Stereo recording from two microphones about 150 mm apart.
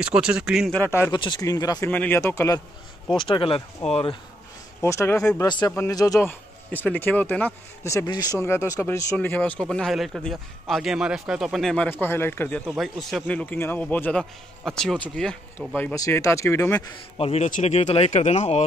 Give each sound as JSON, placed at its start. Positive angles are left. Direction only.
{"t": 0.0, "sound": "speech", "side_deg": -5}
{"t": 0.7, "sound": "speech", "side_deg": 20}
{"t": 1.9, "sound": "speech", "side_deg": 10}
{"t": 3.2, "sound": "speech", "side_deg": 35}
{"t": 4.8, "sound": "speech", "side_deg": 20}
{"t": 12.7, "sound": "speech", "side_deg": 0}
{"t": 17.2, "sound": "speech", "side_deg": 40}
{"t": 17.5, "sound": "speech", "side_deg": 55}